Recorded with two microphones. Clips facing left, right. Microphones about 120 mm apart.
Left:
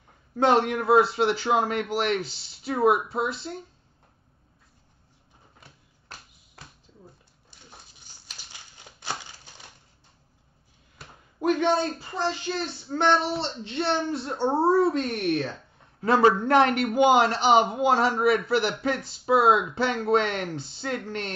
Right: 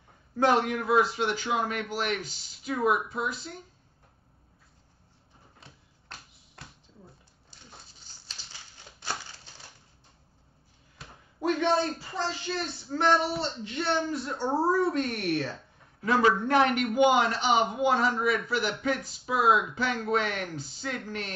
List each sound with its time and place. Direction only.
0.4 s a man's voice: 30° left (ahead or behind)
8.1 s a sound: 15° left (ahead or behind)
9.0 s typewriter: 15° left (ahead or behind)
11.4 s speech: 20° left (ahead or behind)
16.0 s a man's voice: 35° left (ahead or behind)